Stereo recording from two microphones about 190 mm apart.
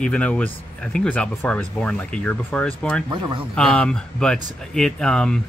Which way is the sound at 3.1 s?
25° right (ahead or behind).